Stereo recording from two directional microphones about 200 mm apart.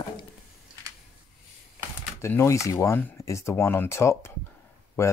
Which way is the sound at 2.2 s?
15° left (ahead or behind).